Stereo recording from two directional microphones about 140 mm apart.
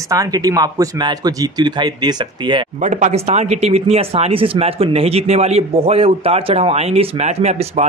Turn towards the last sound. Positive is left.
turn(degrees=-50)  # may be behind; listen again after turning